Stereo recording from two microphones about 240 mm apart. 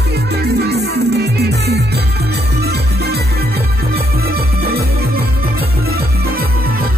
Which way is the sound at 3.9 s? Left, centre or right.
Right.